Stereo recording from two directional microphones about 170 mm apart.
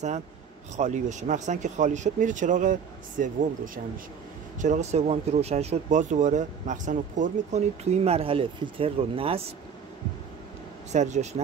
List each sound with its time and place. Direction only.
0.7 s speech: 45° right (ahead or behind)
10.9 s speech: 45° right (ahead or behind)